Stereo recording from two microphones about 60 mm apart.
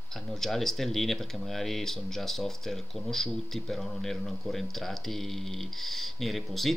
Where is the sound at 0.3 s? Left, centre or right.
Centre.